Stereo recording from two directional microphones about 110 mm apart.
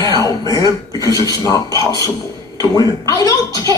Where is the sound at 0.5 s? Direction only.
35° left (ahead or behind).